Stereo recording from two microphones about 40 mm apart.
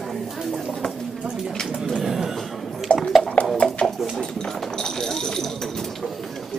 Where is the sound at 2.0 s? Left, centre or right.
Centre.